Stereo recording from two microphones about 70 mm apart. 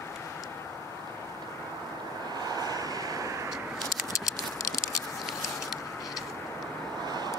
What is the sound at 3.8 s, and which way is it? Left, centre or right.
Patter, left.